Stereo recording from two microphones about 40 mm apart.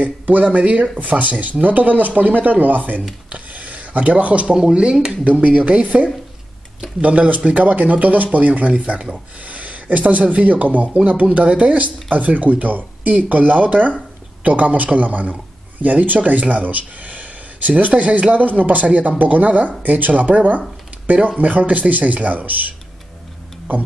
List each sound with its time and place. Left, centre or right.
0.0 s speech: right
3.3 s a sound: right
4.6 s speech: right
5.0 s speech: right